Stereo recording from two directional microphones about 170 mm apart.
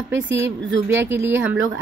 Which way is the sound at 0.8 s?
15° right (ahead or behind).